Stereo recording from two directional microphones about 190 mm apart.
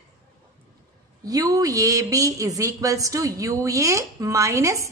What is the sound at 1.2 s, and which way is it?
Speech, 20° right (ahead or behind).